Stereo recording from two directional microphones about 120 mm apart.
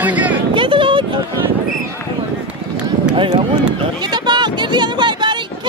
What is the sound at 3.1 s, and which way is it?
Run, 45° right (ahead or behind).